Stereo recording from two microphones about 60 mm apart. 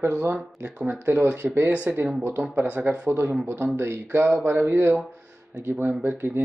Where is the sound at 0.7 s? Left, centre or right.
Right.